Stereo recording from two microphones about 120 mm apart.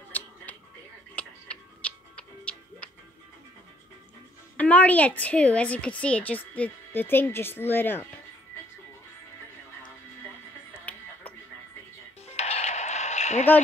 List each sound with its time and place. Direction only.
1.1 s music: 10° left (ahead or behind)
4.6 s a woman's voice: 15° left (ahead or behind)
10.9 s music: 10° left (ahead or behind)
12.4 s a sound: 65° left (ahead or behind)